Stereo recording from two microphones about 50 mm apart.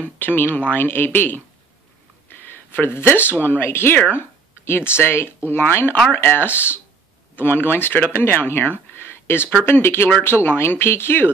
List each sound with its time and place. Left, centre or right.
0.0 s speech: left
8.9 s a sound: left
9.7 s speech: left